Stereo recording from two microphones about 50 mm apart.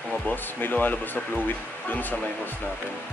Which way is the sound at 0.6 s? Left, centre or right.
Left.